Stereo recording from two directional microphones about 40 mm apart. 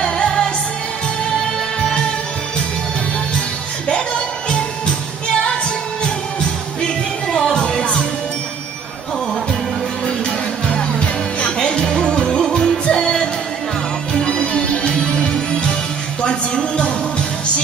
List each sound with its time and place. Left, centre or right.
0.0 s music: centre
5.3 s music: centre
7.3 s music: centre
10.7 s music: left